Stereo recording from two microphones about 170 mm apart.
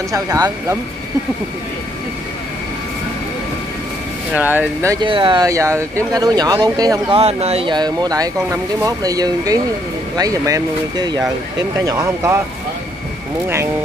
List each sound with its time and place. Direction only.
0.1 s speech: 20° right (ahead or behind)
4.3 s speech: 10° right (ahead or behind)
5.0 s speech: 30° right (ahead or behind)
7.2 s speech: 40° right (ahead or behind); by 12.4 s 20° right (ahead or behind)